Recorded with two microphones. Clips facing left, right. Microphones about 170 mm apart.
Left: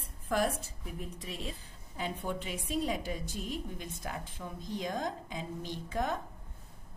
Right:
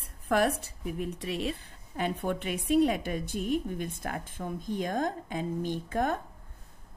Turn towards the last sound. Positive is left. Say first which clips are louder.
# right 5 dB
turn(degrees=-55)  # may be behind; listen again after turning